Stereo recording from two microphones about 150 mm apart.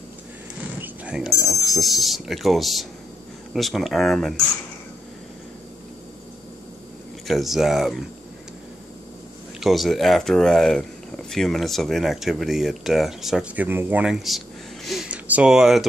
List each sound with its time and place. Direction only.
0.7 s speech: 10° right (ahead or behind)
7.2 s speech: centre (ahead or behind)
9.6 s speech: centre (ahead or behind)
14.9 s a sound: 5° right (ahead or behind)